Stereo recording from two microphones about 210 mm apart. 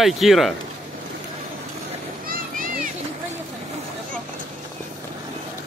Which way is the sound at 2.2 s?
40° right (ahead or behind).